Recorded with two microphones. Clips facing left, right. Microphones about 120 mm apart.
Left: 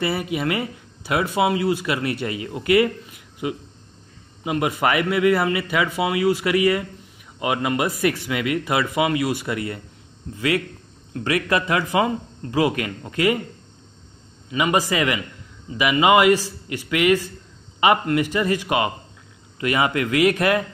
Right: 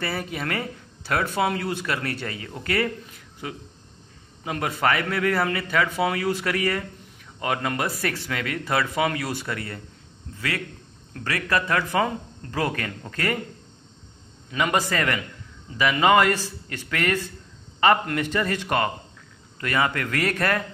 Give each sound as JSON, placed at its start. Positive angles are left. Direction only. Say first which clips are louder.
{"t": 0.0, "sound": "speech", "louder": "left 6 dB", "side_deg": 10}
{"t": 11.1, "sound": "speech", "louder": "left 4 dB", "side_deg": 15}
{"t": 14.5, "sound": "speech", "louder": "left 3 dB", "side_deg": 5}